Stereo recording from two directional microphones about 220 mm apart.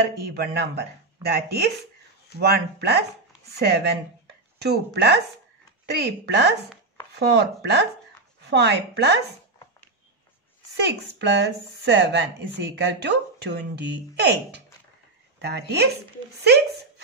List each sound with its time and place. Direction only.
0.2 s a woman's voice: 45° right (ahead or behind)
2.3 s speech: 45° left (ahead or behind)
3.5 s a woman's voice: 50° right (ahead or behind)
10.8 s a woman's voice: 50° right (ahead or behind)